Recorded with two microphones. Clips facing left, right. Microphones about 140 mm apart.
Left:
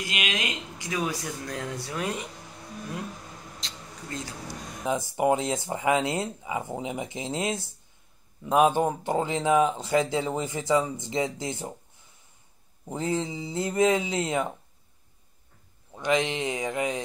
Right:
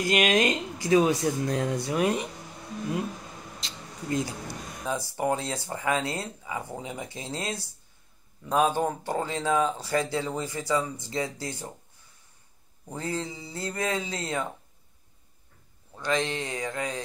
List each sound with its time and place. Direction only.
0.0 s speech: 45° right (ahead or behind); by 2.2 s 15° right (ahead or behind)
3.6 s a sound: 5° right (ahead or behind)
4.8 s speech: 15° left (ahead or behind)
12.8 s speech: 20° left (ahead or behind)
15.9 s speech: 15° left (ahead or behind)